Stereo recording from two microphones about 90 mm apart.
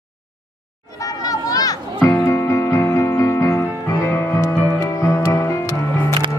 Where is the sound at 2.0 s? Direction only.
30° left (ahead or behind).